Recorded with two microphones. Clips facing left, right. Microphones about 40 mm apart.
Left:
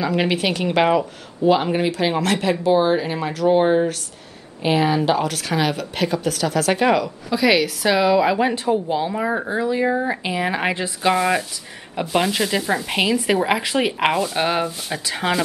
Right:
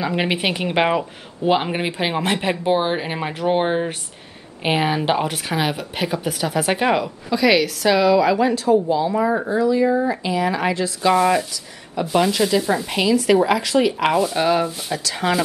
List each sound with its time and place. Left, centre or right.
0.0 s speech: centre
7.2 s a woman's voice: centre; by 9.1 s left
9.1 s a woman's voice: centre
9.5 s speech: left
11.1 s a woman's voice: centre